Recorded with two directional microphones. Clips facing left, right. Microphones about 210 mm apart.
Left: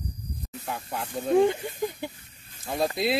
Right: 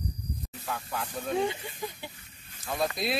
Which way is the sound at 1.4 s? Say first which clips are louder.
Left 10 dB; 50° left (ahead or behind).